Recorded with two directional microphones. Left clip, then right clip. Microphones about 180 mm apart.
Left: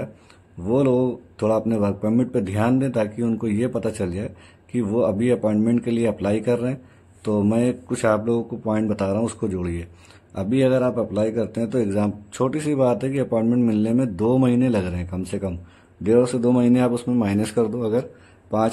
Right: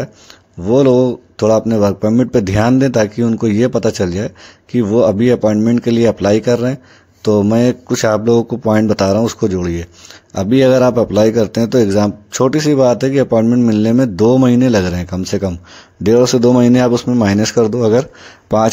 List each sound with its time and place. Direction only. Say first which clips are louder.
0.7 s speech: right 9 dB; 30° right (ahead or behind)